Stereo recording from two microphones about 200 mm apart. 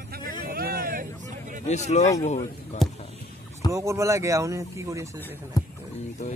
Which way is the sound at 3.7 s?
15° right (ahead or behind).